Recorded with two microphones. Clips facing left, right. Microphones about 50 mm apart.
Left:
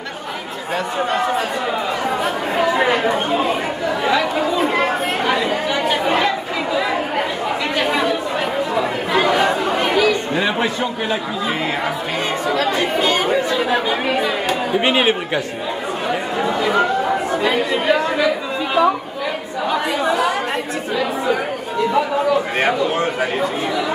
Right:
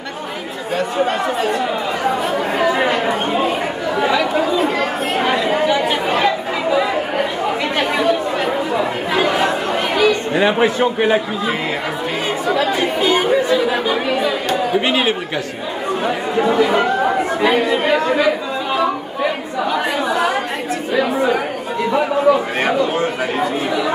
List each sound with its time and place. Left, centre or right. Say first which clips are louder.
10.3 s speech: right 4 dB; centre
12.5 s speech: even; centre
14.9 s a man's voice: left 1 dB; centre